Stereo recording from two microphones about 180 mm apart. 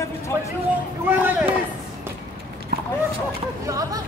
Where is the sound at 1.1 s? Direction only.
10° right (ahead or behind).